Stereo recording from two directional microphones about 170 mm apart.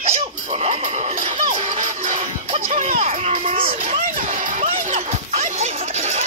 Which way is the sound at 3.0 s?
40° right (ahead or behind).